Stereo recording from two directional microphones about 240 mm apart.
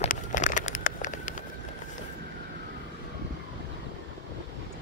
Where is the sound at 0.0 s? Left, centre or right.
Left.